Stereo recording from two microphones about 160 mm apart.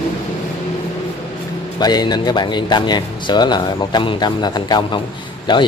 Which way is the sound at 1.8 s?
25° left (ahead or behind).